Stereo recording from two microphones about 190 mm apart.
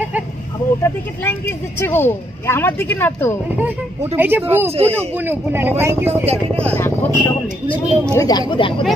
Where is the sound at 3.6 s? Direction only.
10° right (ahead or behind).